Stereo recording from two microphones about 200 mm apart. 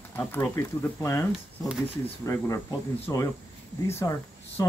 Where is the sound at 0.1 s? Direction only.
10° left (ahead or behind).